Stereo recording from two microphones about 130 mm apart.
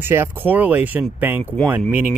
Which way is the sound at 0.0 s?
15° right (ahead or behind).